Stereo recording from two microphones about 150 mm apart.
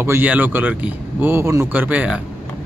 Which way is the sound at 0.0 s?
15° right (ahead or behind).